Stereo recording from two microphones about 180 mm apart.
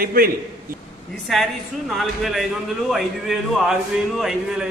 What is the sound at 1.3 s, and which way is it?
Speech, centre (ahead or behind).